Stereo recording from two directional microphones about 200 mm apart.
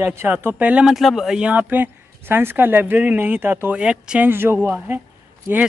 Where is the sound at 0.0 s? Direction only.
10° right (ahead or behind).